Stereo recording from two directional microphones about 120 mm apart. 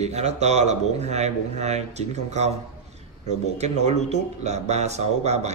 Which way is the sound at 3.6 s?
65° right (ahead or behind).